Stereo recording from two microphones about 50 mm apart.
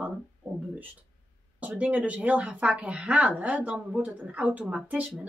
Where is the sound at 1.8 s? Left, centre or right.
Right.